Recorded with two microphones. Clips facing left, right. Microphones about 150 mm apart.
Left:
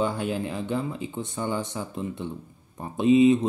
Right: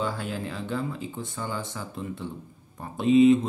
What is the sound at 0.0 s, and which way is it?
Speech, 20° left (ahead or behind).